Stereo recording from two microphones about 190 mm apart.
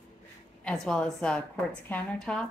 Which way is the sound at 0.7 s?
5° left (ahead or behind).